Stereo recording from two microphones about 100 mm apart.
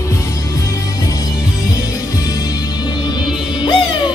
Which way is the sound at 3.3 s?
50° left (ahead or behind).